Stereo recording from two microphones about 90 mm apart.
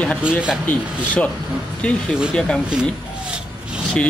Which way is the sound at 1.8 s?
10° left (ahead or behind).